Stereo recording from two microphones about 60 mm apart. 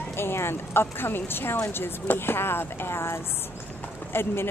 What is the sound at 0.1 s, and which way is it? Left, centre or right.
Speech, left.